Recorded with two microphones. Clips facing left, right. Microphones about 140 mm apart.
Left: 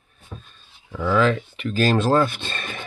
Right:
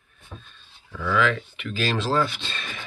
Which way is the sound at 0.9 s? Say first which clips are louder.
Left 4 dB; 35° left (ahead or behind).